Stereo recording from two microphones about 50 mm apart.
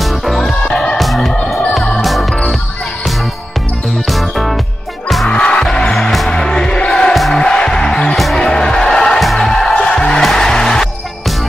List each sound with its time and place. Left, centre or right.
0.0 s music: centre
0.9 s music: centre
4.1 s music: centre
5.3 s music: centre